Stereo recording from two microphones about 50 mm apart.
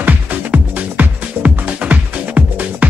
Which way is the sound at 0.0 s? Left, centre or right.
Right.